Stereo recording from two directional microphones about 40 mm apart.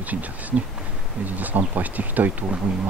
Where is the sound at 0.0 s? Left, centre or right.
Right.